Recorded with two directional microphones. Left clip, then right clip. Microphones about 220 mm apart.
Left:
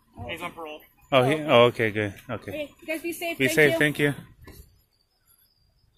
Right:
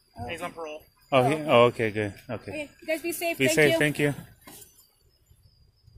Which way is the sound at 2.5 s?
50° right (ahead or behind).